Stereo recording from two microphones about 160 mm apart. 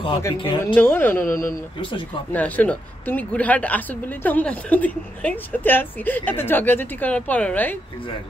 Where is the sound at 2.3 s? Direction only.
10° left (ahead or behind).